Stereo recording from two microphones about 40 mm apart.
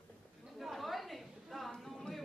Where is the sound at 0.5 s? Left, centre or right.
Centre.